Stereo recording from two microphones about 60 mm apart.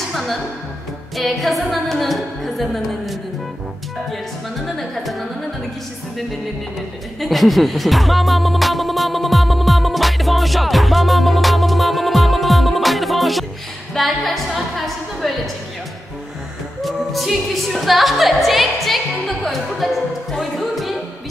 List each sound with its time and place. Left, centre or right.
1.1 s music: centre
4.6 s music: centre
7.2 s music: centre
16.8 s music: centre